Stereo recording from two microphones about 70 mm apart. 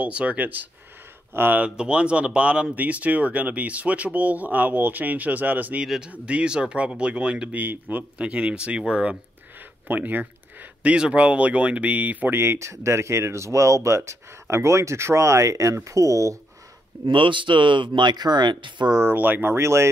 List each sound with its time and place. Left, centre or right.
0.0 s speech: centre
1.6 s speech: centre
5.9 s speech: centre
7.6 s speech: right
8.2 s speech: centre
9.8 s speech: right
12.4 s speech: right
18.0 s speech: right
19.1 s speech: right